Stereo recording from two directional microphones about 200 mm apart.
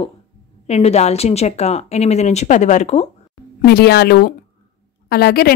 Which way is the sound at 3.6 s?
50° left (ahead or behind).